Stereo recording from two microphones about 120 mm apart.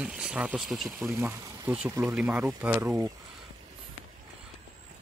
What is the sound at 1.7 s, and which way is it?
Speech, 10° right (ahead or behind).